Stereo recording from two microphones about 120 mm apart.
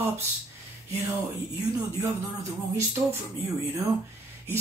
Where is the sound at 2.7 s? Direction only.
20° right (ahead or behind).